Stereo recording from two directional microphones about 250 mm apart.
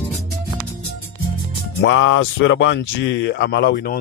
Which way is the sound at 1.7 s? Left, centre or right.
Left.